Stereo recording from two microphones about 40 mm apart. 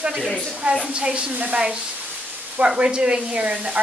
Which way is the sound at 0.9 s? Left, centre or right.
Right.